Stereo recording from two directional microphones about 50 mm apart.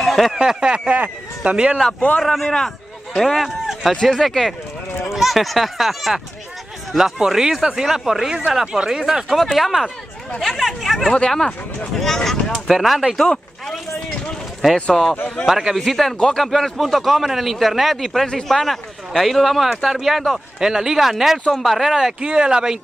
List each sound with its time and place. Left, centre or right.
0.0 s a sound: centre
0.4 s speech: centre
2.0 s a man's voice: left
2.2 s speech: centre
12.6 s speech: centre
13.2 s speech: centre
15.4 s speech: centre
15.8 s speech: centre
16.2 s speech: centre
16.4 s speech: centre
22.2 s speech: centre